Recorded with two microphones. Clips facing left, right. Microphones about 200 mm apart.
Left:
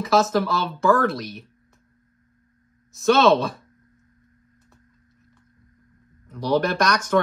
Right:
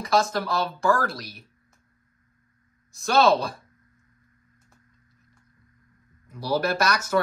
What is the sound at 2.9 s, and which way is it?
Speech, centre (ahead or behind).